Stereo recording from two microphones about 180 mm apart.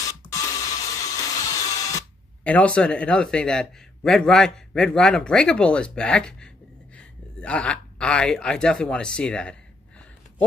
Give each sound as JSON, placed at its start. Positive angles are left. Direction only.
{"t": 0.3, "sound": "music", "side_deg": 20}
{"t": 2.4, "sound": "a man's voice", "side_deg": 5}